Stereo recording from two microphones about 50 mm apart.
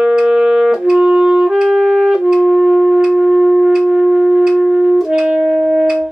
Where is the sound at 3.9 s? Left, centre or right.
Centre.